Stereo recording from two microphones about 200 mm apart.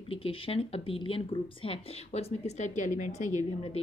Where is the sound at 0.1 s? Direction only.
25° left (ahead or behind).